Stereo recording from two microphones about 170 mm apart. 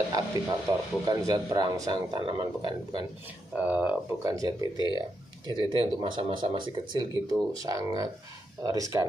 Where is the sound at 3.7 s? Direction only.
10° right (ahead or behind).